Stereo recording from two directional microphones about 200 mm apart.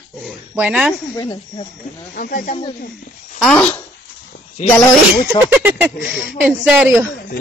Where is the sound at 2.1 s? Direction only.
45° left (ahead or behind).